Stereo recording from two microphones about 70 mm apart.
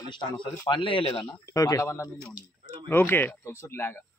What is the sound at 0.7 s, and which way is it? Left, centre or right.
Speech, left.